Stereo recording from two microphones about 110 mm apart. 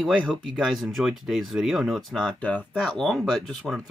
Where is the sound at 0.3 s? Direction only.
Centre (ahead or behind).